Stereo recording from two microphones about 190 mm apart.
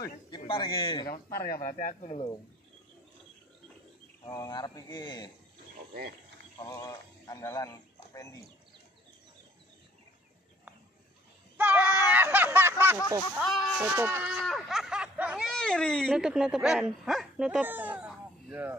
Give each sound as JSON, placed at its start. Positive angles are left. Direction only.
{"t": 0.5, "sound": "a man's voice", "side_deg": 25}
{"t": 1.1, "sound": "speech", "side_deg": 50}
{"t": 2.0, "sound": "speech", "side_deg": 30}
{"t": 4.3, "sound": "a man's voice", "side_deg": 20}
{"t": 6.6, "sound": "speech", "side_deg": 20}
{"t": 11.5, "sound": "a sound", "side_deg": -10}
{"t": 13.4, "sound": "speech", "side_deg": 0}